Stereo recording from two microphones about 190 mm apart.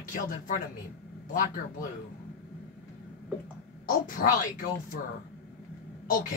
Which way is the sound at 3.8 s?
45° left (ahead or behind).